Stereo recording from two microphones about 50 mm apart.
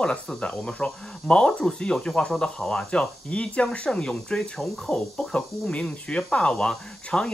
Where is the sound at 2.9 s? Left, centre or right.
Left.